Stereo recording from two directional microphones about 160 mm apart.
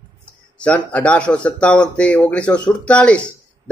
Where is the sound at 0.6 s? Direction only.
10° left (ahead or behind).